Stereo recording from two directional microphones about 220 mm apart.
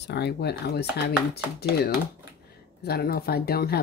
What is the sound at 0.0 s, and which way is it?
Speech, 50° left (ahead or behind).